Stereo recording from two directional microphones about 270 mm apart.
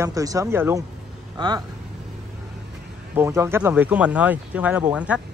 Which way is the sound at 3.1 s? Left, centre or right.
Centre.